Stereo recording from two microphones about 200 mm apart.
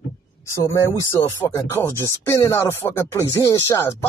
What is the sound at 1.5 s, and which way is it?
Speech, 15° left (ahead or behind).